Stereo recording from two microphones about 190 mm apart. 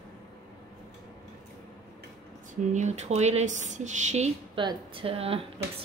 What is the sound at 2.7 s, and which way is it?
Speech, 35° right (ahead or behind).